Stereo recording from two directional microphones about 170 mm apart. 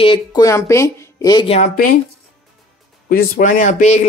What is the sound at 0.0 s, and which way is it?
A woman's voice, 25° left (ahead or behind).